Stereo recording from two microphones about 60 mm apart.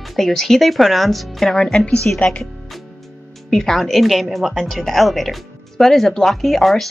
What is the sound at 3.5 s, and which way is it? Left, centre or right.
A woman's voice, centre.